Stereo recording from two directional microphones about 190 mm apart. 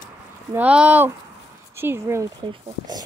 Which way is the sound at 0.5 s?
5° right (ahead or behind).